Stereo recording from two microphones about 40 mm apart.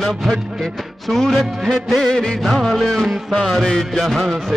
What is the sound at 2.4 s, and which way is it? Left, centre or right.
Music, centre.